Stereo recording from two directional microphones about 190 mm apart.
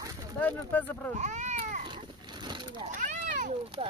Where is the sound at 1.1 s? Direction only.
40° right (ahead or behind).